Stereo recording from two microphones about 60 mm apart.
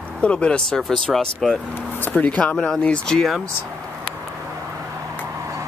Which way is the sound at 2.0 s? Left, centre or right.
Left.